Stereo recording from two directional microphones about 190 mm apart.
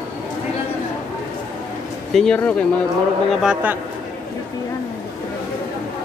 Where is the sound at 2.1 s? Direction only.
5° left (ahead or behind).